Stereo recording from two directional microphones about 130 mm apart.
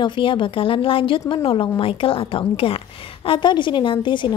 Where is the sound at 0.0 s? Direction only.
40° left (ahead or behind).